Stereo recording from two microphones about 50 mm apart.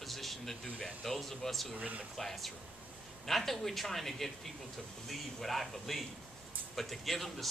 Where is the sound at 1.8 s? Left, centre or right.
Right.